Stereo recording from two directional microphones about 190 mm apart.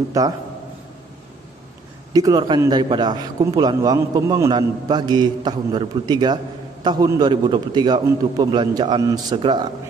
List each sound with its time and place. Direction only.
0.2 s a man's voice: 20° right (ahead or behind)
2.1 s a man's voice: 20° right (ahead or behind)